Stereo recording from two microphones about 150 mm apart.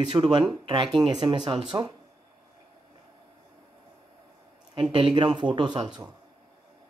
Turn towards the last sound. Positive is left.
turn(degrees=-30)  # may be behind; listen again after turning